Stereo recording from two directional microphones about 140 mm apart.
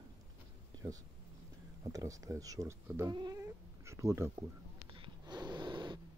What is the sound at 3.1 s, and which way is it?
Speech, 30° right (ahead or behind).